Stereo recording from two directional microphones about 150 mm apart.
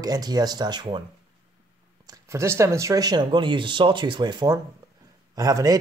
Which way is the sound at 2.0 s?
20° right (ahead or behind).